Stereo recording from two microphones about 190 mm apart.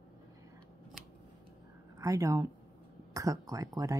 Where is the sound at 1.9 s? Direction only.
15° right (ahead or behind).